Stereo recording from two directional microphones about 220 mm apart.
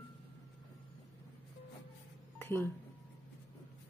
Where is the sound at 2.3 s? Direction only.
10° left (ahead or behind).